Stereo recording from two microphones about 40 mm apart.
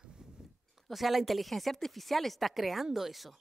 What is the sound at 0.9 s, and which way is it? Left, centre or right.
Speech, centre.